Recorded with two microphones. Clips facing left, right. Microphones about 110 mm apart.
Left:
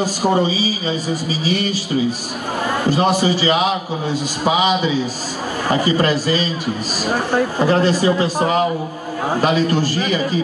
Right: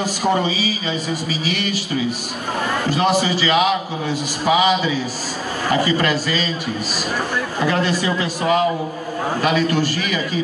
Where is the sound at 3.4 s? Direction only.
25° left (ahead or behind).